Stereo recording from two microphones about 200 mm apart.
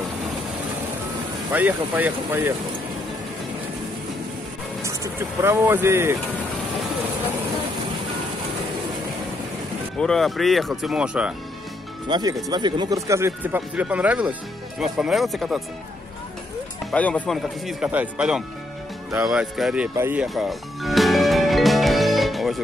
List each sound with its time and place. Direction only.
1.5 s speech: 10° right (ahead or behind)
4.8 s speech: 15° right (ahead or behind)
9.9 s speech: centre (ahead or behind)
12.1 s speech: 20° right (ahead or behind); by 15.6 s centre (ahead or behind)
16.9 s speech: 5° left (ahead or behind)
19.1 s music: 5° right (ahead or behind)